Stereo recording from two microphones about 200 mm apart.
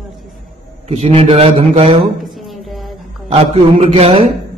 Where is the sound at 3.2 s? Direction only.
30° right (ahead or behind).